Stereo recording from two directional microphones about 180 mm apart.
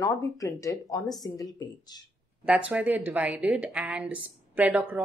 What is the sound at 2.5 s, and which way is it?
A woman's voice, 10° right (ahead or behind).